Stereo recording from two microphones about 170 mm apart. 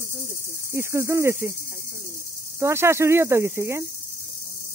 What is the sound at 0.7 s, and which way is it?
Speech, 15° right (ahead or behind).